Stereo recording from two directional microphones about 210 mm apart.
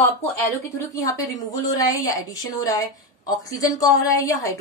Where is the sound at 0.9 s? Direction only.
15° left (ahead or behind).